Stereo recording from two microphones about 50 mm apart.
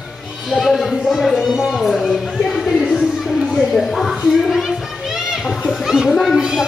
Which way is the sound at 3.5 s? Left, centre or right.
Centre.